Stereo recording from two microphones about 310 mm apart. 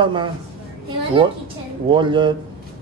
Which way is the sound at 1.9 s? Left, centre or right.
Centre.